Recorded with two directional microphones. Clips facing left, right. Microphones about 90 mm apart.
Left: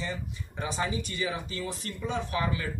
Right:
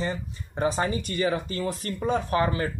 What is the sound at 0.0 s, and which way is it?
A man's voice, 40° right (ahead or behind).